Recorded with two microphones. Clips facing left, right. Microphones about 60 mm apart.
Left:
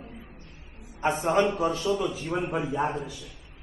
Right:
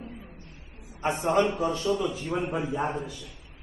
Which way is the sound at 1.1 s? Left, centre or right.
Left.